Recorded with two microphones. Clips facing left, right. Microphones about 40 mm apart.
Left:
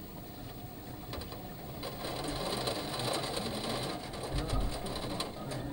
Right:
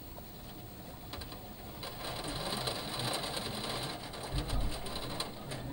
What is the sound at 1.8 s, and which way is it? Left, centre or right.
Sewing machine, centre.